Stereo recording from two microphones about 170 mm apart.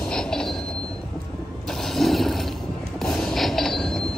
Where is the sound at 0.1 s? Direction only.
5° left (ahead or behind).